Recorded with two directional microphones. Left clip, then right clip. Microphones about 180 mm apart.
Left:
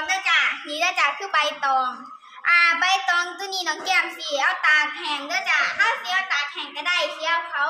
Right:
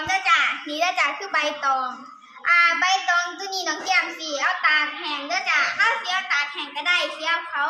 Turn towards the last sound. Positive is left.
turn(degrees=0)  # may be behind; listen again after turning